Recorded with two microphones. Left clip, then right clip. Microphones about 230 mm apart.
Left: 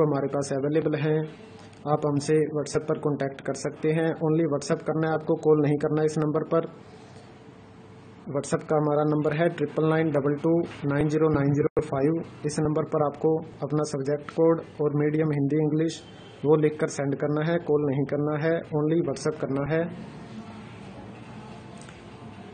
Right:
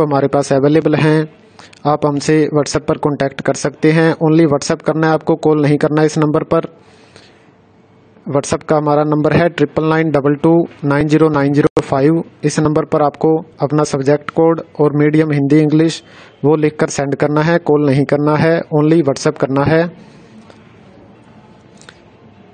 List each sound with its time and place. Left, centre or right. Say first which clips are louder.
0.0 s a man's voice: right 12 dB; right
8.3 s a man's voice: right 12 dB; right